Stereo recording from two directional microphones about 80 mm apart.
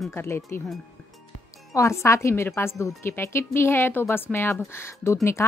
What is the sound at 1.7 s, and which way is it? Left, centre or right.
A woman's voice, left.